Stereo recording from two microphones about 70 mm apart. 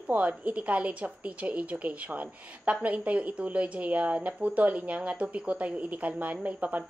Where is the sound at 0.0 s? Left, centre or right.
Right.